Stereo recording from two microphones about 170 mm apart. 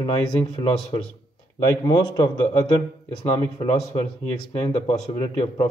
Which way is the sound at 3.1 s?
35° left (ahead or behind).